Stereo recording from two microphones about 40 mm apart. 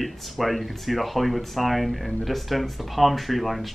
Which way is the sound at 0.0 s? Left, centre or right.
Centre.